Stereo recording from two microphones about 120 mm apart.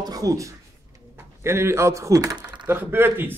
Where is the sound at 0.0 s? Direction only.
30° right (ahead or behind).